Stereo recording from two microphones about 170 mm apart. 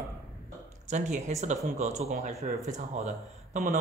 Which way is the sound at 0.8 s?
40° right (ahead or behind).